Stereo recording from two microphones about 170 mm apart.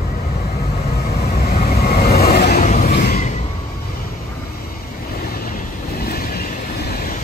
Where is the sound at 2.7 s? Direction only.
55° left (ahead or behind).